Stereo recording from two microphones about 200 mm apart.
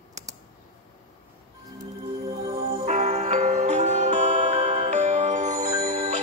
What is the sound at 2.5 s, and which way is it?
Music, 35° right (ahead or behind).